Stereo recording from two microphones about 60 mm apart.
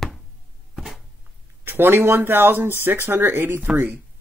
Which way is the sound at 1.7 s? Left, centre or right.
Right.